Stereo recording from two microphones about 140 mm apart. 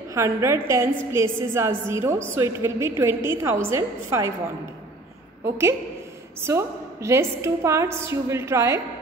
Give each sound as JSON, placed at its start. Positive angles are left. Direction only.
{"t": 0.1, "sound": "a woman's voice", "side_deg": -20}
{"t": 5.4, "sound": "a woman's voice", "side_deg": -20}